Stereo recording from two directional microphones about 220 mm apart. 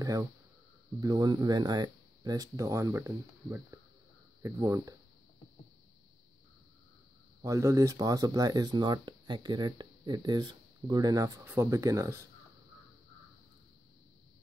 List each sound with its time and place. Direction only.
0.0 s speech: 15° right (ahead or behind)
7.4 s speech: 15° right (ahead or behind)